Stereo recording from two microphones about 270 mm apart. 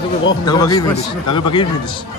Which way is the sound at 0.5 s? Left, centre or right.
Centre.